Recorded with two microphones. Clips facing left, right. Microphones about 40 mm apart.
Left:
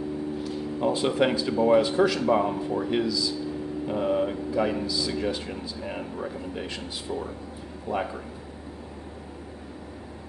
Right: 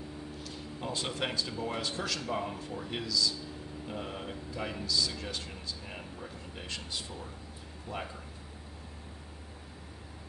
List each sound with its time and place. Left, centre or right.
0.4 s speech: centre